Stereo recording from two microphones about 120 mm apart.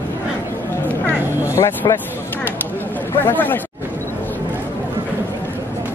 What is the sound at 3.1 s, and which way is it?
Speech, 15° left (ahead or behind).